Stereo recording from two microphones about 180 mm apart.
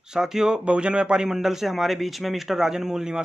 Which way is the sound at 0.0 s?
5° right (ahead or behind).